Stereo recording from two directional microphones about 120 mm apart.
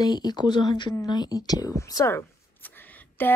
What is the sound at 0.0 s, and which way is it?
A woman's voice, 35° left (ahead or behind).